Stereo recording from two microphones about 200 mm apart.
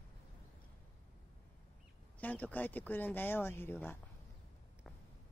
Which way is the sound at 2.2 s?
10° left (ahead or behind).